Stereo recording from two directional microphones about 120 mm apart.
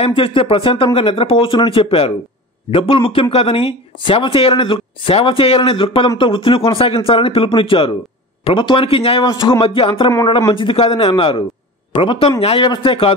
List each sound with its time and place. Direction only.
0.0 s speech: 45° left (ahead or behind)
9.2 s speech: 40° left (ahead or behind)